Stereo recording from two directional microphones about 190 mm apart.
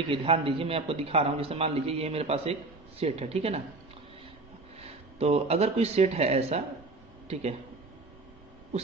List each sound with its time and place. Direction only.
0.1 s a man's voice: 30° right (ahead or behind)
4.7 s a man's voice: 35° right (ahead or behind)